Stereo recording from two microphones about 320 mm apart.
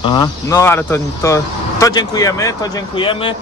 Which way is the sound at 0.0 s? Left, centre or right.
Centre.